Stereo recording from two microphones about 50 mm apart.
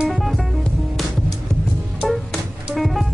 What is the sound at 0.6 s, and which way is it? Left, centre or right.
Music, centre.